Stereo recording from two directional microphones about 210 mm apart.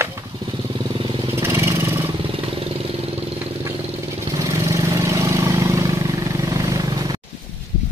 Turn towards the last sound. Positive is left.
turn(degrees=-15)  # may be behind; listen again after turning